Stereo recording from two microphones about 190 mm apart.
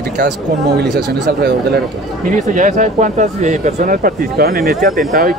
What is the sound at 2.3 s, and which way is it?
Speech, 40° right (ahead or behind).